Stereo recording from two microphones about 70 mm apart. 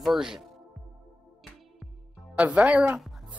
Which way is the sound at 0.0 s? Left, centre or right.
Centre.